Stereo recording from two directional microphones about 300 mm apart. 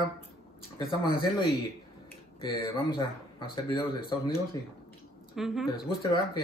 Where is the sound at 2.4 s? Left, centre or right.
Centre.